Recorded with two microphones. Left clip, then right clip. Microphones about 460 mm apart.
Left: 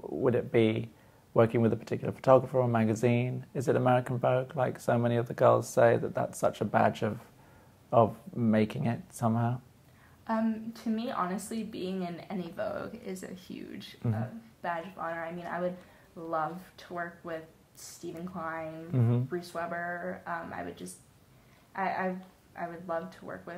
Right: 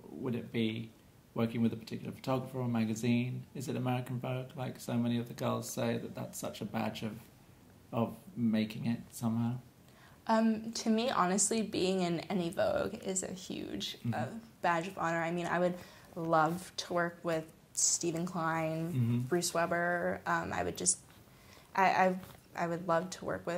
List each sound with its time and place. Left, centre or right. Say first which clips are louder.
0.2 s speech: left 11 dB; left
10.2 s a woman's voice: right 2 dB; right